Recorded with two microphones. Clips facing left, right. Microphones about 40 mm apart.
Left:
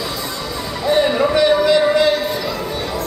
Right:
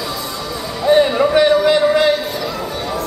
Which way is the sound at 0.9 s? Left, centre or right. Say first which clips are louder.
Right 3 dB; centre.